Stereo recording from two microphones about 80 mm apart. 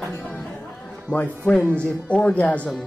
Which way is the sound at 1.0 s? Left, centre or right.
Centre.